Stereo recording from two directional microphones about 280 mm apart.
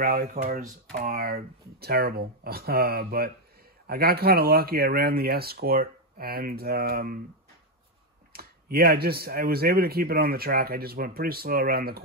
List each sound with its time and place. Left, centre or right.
0.0 s speech: right
8.3 s speech: right